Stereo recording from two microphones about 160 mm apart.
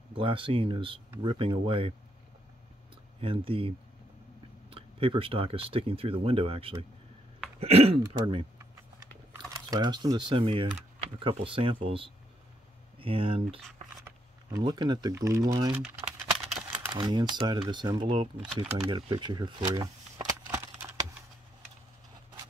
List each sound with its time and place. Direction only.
0.1 s speech: 35° right (ahead or behind)
3.2 s speech: 35° right (ahead or behind)
9.0 s typing: 20° right (ahead or behind)
11.0 s speech: 40° right (ahead or behind)
14.0 s speech: 25° right (ahead or behind)
16.9 s speech: 25° right (ahead or behind)
20.5 s a sound: 15° right (ahead or behind)